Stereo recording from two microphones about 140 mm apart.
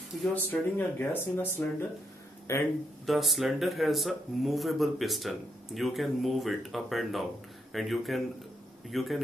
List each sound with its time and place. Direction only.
0.3 s speech: 15° left (ahead or behind)
3.1 s speech: centre (ahead or behind)